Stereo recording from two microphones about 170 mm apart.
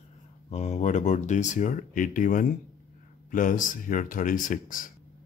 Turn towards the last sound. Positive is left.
turn(degrees=50)  # may be behind; listen again after turning